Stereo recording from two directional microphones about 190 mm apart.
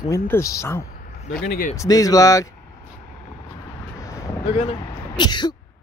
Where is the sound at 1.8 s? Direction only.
20° left (ahead or behind).